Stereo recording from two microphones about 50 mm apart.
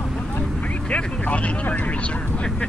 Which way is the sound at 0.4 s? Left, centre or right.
Left.